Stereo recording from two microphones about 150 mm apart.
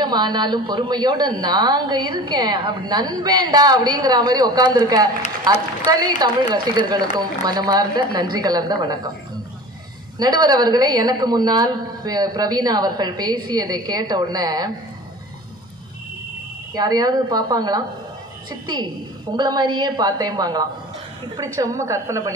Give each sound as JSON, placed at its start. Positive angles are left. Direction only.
{"t": 0.0, "sound": "a woman's voice", "side_deg": -30}
{"t": 10.1, "sound": "a woman's voice", "side_deg": -25}
{"t": 16.7, "sound": "a woman's voice", "side_deg": -25}